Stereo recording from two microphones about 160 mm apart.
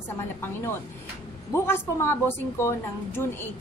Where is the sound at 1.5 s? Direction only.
15° left (ahead or behind).